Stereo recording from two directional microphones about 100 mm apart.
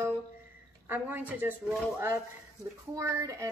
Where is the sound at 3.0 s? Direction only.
30° right (ahead or behind).